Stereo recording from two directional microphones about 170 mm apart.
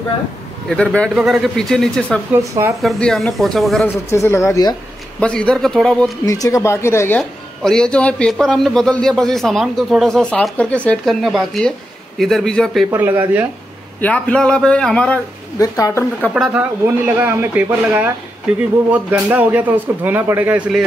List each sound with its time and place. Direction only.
0.7 s speech: 5° left (ahead or behind)
2.3 s speech: 15° right (ahead or behind)
2.8 s speech: centre (ahead or behind)
4.1 s speech: 15° left (ahead or behind)
5.2 s speech: 5° left (ahead or behind)
6.2 s speech: 20° left (ahead or behind); by 12.8 s 5° left (ahead or behind)
12.9 s speech: 15° right (ahead or behind)
14.0 s speech: 5° left (ahead or behind)
15.8 s speech: 15° left (ahead or behind)
16.3 s speech: 10° right (ahead or behind)